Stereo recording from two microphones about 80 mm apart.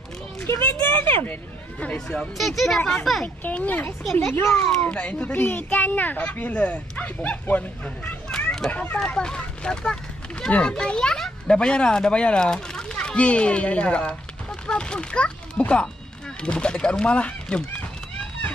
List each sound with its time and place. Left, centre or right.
0.5 s a sound: left
1.2 s speech: centre
2.0 s speech: centre
2.8 s a child's voice: centre
4.2 s speech: left
4.6 s a child's voice: centre